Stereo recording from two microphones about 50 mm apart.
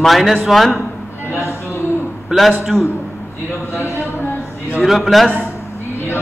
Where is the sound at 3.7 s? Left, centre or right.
Left.